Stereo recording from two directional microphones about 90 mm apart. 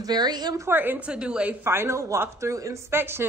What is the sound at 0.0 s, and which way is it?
Speech, 50° right (ahead or behind).